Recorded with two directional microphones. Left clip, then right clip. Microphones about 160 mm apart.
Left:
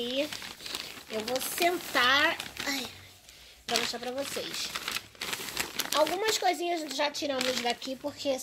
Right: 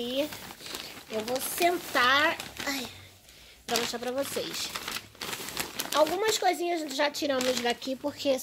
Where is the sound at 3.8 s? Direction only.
20° right (ahead or behind).